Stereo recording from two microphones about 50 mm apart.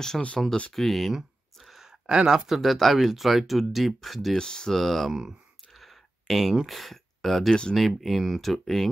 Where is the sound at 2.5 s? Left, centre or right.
Centre.